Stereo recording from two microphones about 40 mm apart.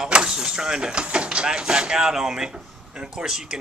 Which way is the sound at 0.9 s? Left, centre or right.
Right.